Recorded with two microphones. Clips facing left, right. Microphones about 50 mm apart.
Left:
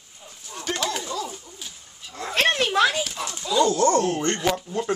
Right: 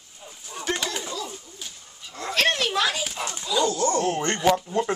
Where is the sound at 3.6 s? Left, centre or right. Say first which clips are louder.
Left 5 dB; left.